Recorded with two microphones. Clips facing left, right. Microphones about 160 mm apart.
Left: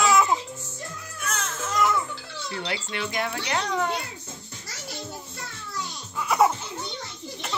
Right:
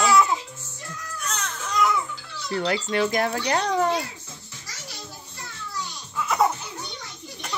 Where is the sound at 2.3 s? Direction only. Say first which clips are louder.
Right 7 dB; 40° right (ahead or behind).